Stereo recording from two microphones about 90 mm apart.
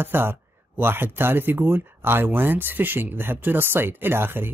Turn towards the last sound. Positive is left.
turn(degrees=-25)  # may be behind; listen again after turning